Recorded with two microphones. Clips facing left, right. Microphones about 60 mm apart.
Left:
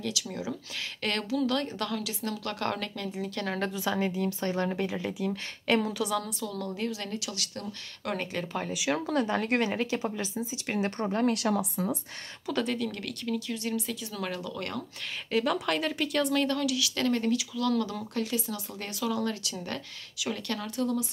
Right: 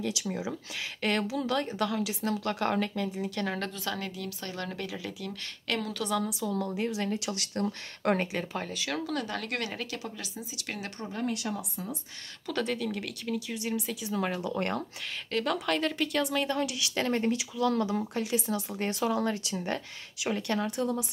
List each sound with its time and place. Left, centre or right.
0.1 s speech: right
3.1 s speech: centre
3.8 s speech: centre
4.6 s speech: centre
5.9 s speech: centre
6.6 s speech: centre
7.2 s speech: right
8.5 s speech: centre
9.0 s a woman's voice: left
11.0 s speech: left
12.4 s speech: centre
14.4 s speech: right
15.3 s speech: centre
16.5 s speech: right